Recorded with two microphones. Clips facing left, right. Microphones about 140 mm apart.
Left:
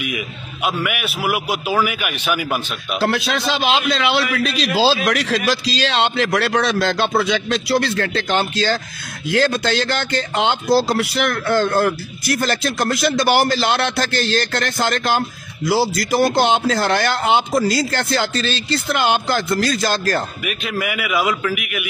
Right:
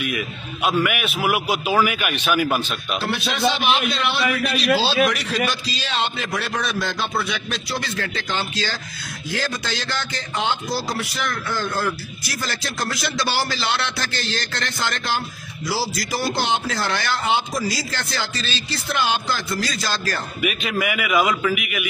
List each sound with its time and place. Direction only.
0.7 s a man's voice: 5° left (ahead or behind)
3.0 s a man's voice: 90° left; by 8.7 s 55° left (ahead or behind)
9.3 s speech: 65° left (ahead or behind)
20.4 s a man's voice: centre (ahead or behind)